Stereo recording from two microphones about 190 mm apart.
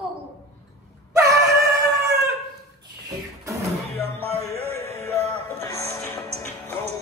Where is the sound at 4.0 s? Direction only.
30° right (ahead or behind).